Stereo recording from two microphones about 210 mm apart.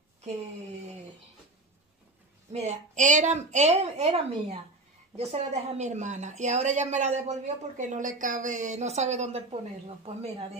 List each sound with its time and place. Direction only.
2.5 s speech: 35° right (ahead or behind)